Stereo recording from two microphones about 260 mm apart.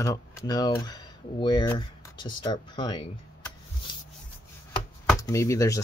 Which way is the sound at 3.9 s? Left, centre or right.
Centre.